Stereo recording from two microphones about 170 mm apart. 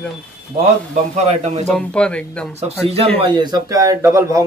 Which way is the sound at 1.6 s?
5° left (ahead or behind).